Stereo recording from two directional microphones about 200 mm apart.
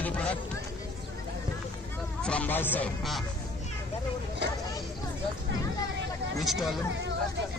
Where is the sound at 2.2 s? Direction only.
5° left (ahead or behind).